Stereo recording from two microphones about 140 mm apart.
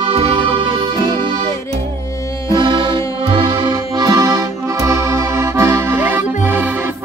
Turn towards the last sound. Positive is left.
turn(degrees=-15)  # may be behind; listen again after turning